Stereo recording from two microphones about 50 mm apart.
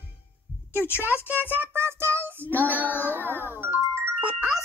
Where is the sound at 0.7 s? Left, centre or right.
Left.